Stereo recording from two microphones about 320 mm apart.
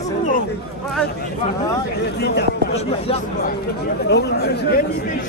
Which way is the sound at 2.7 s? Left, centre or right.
Centre.